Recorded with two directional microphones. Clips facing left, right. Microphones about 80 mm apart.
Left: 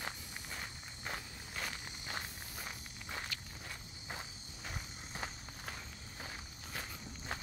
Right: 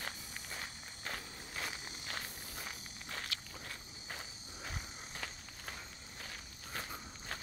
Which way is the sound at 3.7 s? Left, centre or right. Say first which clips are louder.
Left 3 dB; centre.